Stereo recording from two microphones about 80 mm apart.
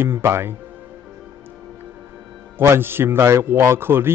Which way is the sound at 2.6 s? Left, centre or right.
Right.